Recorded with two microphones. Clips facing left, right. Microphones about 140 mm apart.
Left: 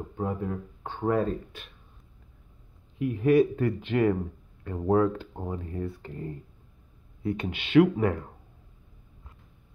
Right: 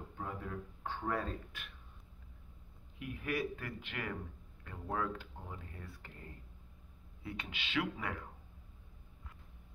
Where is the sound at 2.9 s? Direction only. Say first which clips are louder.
Left 17 dB; 30° left (ahead or behind).